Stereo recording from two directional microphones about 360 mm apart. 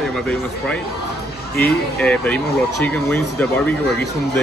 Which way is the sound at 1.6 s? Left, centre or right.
Centre.